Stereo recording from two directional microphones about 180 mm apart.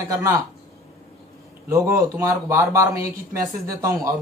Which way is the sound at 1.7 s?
15° right (ahead or behind).